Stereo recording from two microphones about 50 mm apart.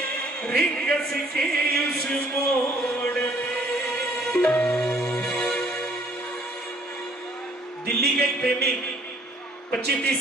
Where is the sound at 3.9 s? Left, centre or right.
Centre.